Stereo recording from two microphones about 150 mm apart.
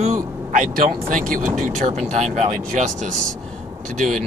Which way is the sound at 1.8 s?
50° right (ahead or behind).